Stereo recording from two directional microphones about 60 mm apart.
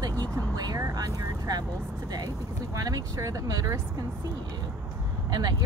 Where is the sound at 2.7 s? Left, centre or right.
Right.